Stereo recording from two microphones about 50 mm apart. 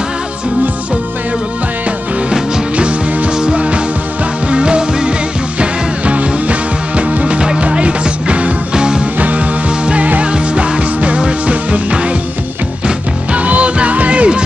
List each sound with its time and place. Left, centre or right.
2.3 s music: centre
9.2 s music: right